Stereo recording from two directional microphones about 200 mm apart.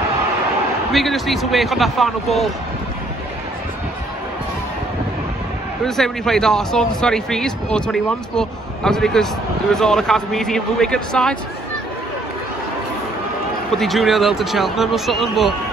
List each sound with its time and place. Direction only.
0.9 s speech: centre (ahead or behind)
5.9 s speech: centre (ahead or behind)
13.7 s speech: centre (ahead or behind)